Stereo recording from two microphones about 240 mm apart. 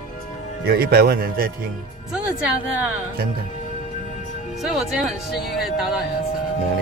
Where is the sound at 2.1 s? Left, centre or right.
Centre.